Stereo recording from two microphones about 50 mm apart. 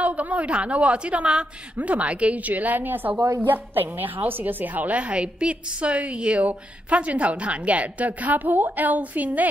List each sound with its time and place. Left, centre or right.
0.0 s a woman's voice: right